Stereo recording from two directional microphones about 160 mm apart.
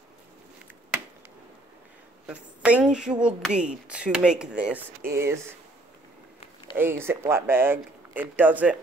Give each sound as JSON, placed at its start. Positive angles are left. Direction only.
{"t": 2.2, "sound": "a woman's voice", "side_deg": -10}
{"t": 6.8, "sound": "speech", "side_deg": -15}